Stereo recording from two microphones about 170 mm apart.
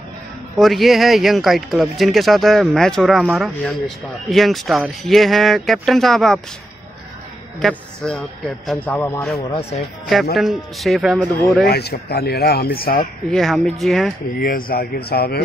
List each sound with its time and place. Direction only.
0.6 s speech: centre (ahead or behind)
7.6 s speech: 5° left (ahead or behind)
9.5 s speech: 35° left (ahead or behind)
10.3 s speech: centre (ahead or behind)
11.6 s speech: 70° left (ahead or behind)
13.3 s speech: centre (ahead or behind)
14.3 s speech: 60° left (ahead or behind)